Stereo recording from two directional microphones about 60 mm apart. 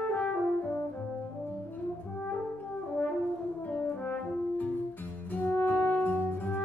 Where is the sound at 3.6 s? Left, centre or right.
Left.